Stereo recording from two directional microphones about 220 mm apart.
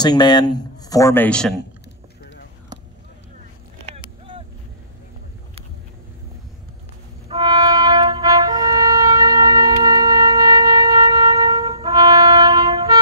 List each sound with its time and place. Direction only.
0.0 s speech: 20° left (ahead or behind)
7.2 s music: 20° right (ahead or behind)